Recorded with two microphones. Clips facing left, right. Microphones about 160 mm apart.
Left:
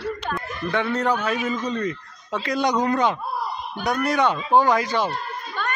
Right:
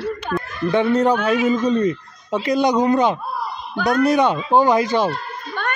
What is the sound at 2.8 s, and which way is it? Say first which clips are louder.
Speech: right 5 dB; 20° right (ahead or behind).